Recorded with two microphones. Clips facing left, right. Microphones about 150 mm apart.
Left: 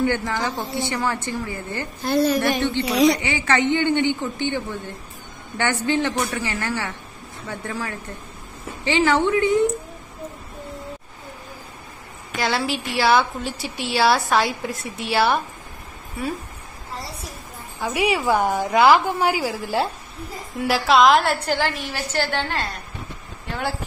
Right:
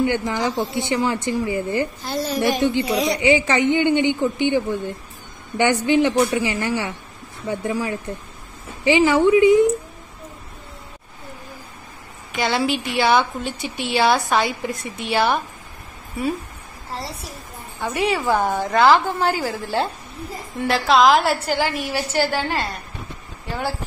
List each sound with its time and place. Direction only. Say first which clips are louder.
0.0 s a woman's voice: right 2 dB; 15° right (ahead or behind)
2.0 s a woman's voice: left 6 dB; 60° left (ahead or behind)
2.4 s a woman's voice: right 3 dB; 15° right (ahead or behind)
12.4 s a woman's voice: right 2 dB; centre (ahead or behind)
16.9 s a woman's voice: right 3 dB; 30° right (ahead or behind)
17.7 s a woman's voice: even; 10° left (ahead or behind)